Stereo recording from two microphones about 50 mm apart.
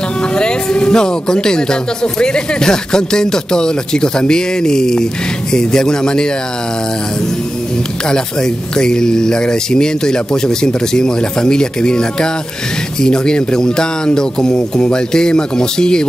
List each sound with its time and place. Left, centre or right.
0.4 s speech: centre
8.1 s speech: centre